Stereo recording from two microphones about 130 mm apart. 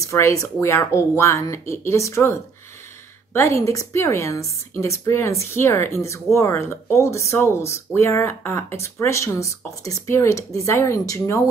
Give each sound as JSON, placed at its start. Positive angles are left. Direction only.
{"t": 0.0, "sound": "a woman's voice", "side_deg": 25}